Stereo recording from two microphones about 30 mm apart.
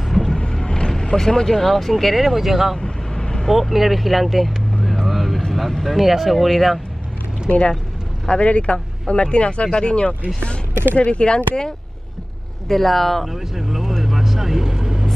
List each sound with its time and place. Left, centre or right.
0.1 s a sound: centre
0.7 s vehicle: left
1.1 s speech: centre
3.2 s vehicle: left
3.4 s speech: centre
5.0 s vehicle: centre
5.5 s speech: centre
7.4 s speech: left
12.6 s speech: centre
13.3 s speech: centre
14.0 s vehicle: centre